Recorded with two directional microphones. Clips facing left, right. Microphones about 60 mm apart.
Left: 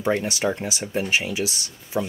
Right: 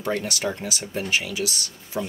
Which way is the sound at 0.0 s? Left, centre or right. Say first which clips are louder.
Left 3 dB; left.